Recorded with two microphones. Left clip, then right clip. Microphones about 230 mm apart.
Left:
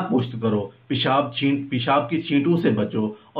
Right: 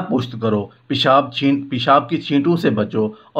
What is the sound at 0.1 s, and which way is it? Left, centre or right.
Speech, right.